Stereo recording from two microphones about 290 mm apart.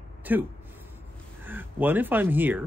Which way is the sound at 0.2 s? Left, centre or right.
Centre.